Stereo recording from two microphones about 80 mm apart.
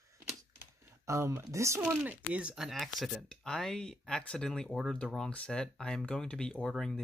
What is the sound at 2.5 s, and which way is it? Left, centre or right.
Speech, centre.